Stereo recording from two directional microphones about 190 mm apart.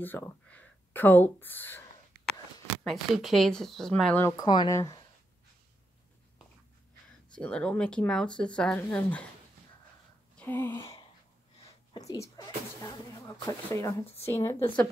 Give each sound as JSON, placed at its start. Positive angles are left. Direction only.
{"t": 0.0, "sound": "speech", "side_deg": 10}
{"t": 2.8, "sound": "speech", "side_deg": 0}
{"t": 7.2, "sound": "speech", "side_deg": 5}
{"t": 10.3, "sound": "speech", "side_deg": 10}
{"t": 12.1, "sound": "speech", "side_deg": 15}